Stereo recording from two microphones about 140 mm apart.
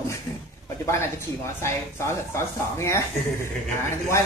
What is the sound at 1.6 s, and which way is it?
Speech, 20° left (ahead or behind).